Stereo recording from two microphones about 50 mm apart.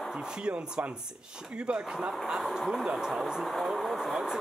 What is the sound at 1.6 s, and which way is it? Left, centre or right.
Speech, right.